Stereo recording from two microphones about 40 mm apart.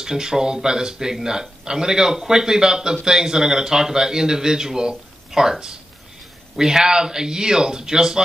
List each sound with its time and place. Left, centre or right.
0.0 s a man's voice: centre